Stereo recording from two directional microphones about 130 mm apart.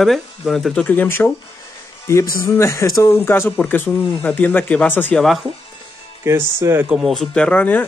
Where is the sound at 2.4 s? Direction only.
20° left (ahead or behind).